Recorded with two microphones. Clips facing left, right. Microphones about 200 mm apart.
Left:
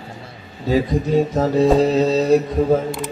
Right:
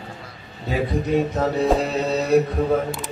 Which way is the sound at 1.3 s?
30° left (ahead or behind).